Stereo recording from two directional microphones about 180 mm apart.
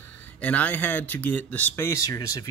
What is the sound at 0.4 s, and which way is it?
Speech, 10° left (ahead or behind).